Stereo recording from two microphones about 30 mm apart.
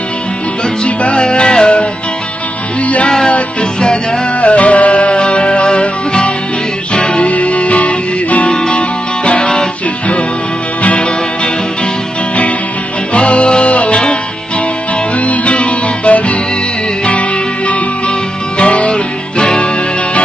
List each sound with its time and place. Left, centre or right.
0.8 s music: left
4.4 s music: left
7.2 s music: left
8.5 s music: left
10.8 s music: left
13.1 s music: left
15.2 s music: left
18.6 s music: left